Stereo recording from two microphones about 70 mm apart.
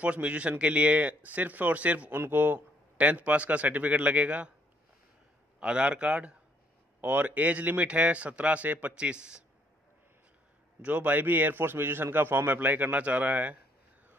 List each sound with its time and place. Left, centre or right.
0.0 s a man's voice: centre
2.1 s a man's voice: right
3.0 s a man's voice: centre
5.6 s a man's voice: centre
10.8 s a man's voice: right